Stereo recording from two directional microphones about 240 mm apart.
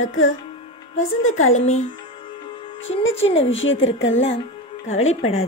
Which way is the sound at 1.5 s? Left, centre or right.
Left.